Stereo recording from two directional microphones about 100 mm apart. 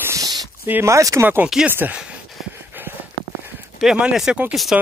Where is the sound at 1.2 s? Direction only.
20° right (ahead or behind).